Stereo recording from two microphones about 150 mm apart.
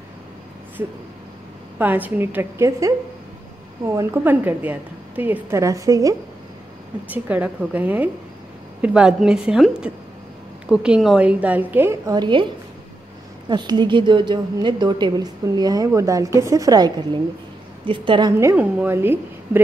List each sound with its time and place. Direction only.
1.8 s a woman's voice: 10° right (ahead or behind)
7.1 s a woman's voice: 10° right (ahead or behind)
12.1 s a woman's voice: 30° right (ahead or behind)
13.5 s a woman's voice: 30° right (ahead or behind)
18.4 s a woman's voice: 15° right (ahead or behind)